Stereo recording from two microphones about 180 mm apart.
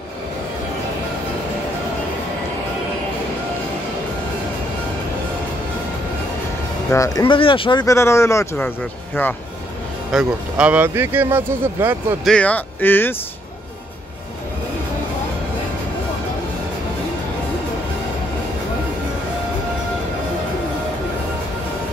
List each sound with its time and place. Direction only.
6.9 s speech: 15° left (ahead or behind)
7.2 s speech: 30° left (ahead or behind)
7.8 s speech: 15° left (ahead or behind)
10.1 s speech: 5° right (ahead or behind)
12.3 s speech: 5° left (ahead or behind)